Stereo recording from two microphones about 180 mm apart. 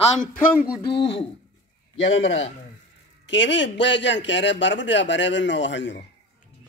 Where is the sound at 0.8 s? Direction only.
30° left (ahead or behind).